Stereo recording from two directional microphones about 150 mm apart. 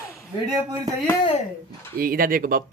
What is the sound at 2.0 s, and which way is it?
Speech, 75° right (ahead or behind).